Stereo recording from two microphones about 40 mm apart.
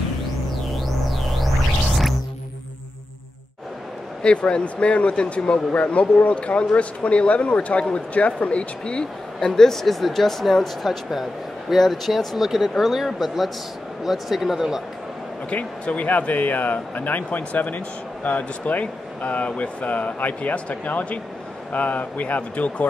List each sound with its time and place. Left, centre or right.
4.2 s speech: left
9.6 s speech: centre
15.5 s speech: left